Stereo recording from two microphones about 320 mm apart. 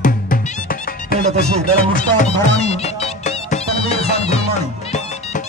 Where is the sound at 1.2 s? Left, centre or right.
Centre.